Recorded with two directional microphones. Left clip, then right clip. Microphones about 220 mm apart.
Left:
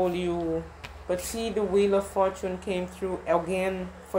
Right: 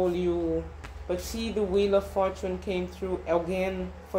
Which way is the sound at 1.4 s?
20° left (ahead or behind).